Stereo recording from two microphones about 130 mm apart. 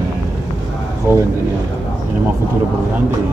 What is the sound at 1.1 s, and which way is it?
Speech, 15° right (ahead or behind).